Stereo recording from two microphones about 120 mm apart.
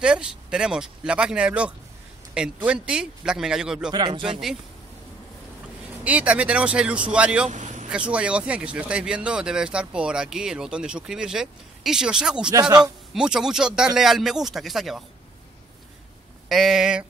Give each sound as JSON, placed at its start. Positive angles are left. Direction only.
{"t": 0.0, "sound": "speech", "side_deg": -10}
{"t": 3.9, "sound": "speech", "side_deg": -35}
{"t": 6.0, "sound": "speech", "side_deg": -10}
{"t": 7.4, "sound": "vehicle", "side_deg": -80}
{"t": 8.1, "sound": "speech", "side_deg": -10}
{"t": 12.4, "sound": "speech", "side_deg": -35}
{"t": 13.1, "sound": "speech", "side_deg": -5}
{"t": 16.4, "sound": "speech", "side_deg": 0}